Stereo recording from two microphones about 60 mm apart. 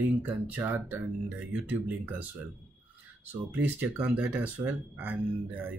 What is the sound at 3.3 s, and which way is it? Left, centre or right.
Speech, right.